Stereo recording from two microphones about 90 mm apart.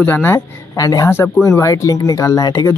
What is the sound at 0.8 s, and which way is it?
Speech, 40° left (ahead or behind).